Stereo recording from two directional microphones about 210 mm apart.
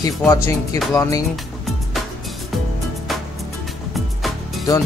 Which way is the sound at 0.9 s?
15° left (ahead or behind).